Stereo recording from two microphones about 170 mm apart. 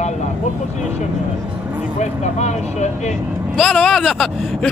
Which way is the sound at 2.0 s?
40° left (ahead or behind).